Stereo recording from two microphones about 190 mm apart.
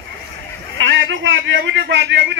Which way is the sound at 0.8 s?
75° right (ahead or behind).